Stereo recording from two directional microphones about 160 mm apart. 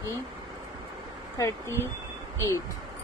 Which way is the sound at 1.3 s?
15° left (ahead or behind).